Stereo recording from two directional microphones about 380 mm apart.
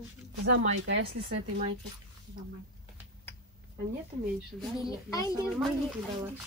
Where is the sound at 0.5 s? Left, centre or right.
Right.